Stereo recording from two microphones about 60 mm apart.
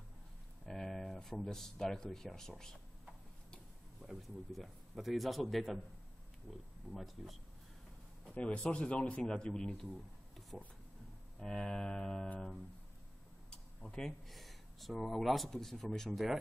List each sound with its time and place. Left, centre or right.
0.7 s speech: centre
4.0 s a man's voice: centre
8.3 s speech: left
9.9 s a sound: centre
11.3 s speech: centre
13.5 s speech: centre